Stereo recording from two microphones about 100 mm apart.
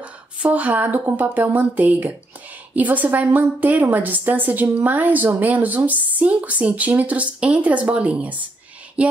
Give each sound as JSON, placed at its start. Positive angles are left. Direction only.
{"t": 0.0, "sound": "a woman's voice", "side_deg": -15}